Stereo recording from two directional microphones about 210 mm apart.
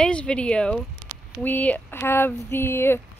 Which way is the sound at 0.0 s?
5° left (ahead or behind).